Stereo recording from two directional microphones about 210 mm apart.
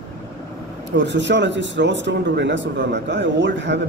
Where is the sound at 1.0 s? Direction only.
60° right (ahead or behind).